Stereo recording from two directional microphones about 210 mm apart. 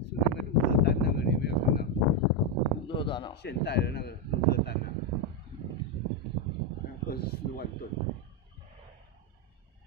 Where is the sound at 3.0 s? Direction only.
25° left (ahead or behind).